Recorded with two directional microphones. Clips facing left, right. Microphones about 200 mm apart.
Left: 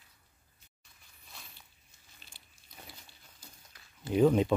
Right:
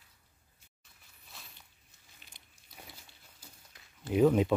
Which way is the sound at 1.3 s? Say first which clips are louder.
Left 1 dB; centre (ahead or behind).